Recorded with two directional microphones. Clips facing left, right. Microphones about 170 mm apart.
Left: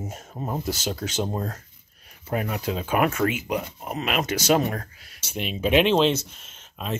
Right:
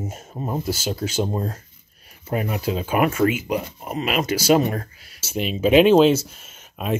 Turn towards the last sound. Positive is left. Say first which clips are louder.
# right 5 dB
turn(degrees=-10)  # may be behind; listen again after turning